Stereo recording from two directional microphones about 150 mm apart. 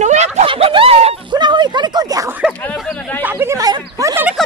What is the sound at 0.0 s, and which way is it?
Snicker, 50° right (ahead or behind).